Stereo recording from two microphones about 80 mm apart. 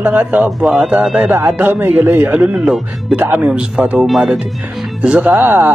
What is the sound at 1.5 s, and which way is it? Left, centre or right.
Speech, right.